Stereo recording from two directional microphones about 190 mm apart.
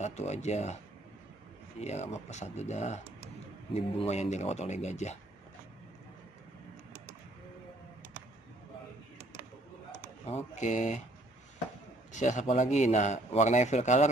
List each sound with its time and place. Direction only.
0.0 s speech: 35° left (ahead or behind)
1.8 s speech: 35° left (ahead or behind)
10.2 s speech: 35° left (ahead or behind)
12.1 s speech: 40° left (ahead or behind)